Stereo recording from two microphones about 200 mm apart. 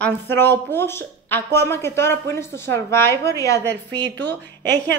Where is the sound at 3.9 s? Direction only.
60° right (ahead or behind).